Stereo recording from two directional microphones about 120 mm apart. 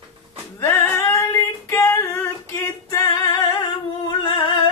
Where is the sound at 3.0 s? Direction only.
35° left (ahead or behind).